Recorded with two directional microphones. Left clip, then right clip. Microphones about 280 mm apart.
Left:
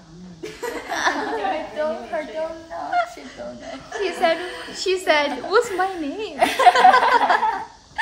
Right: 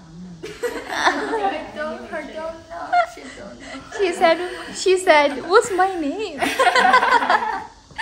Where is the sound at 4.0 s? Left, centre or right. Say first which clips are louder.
Right 4 dB; centre.